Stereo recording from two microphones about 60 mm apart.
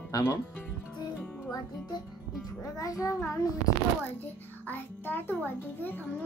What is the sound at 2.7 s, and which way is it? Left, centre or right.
Speech, left.